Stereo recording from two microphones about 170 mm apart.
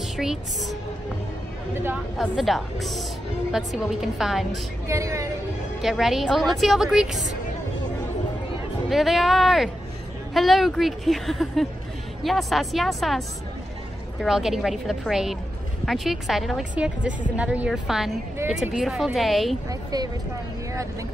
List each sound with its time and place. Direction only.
0.2 s a woman's voice: centre (ahead or behind)
2.1 s a woman's voice: centre (ahead or behind)
4.8 s speech: 15° right (ahead or behind)
5.8 s a woman's voice: centre (ahead or behind)
8.8 s a woman's voice: centre (ahead or behind)
14.2 s a woman's voice: centre (ahead or behind)
19.7 s a sound: 25° right (ahead or behind)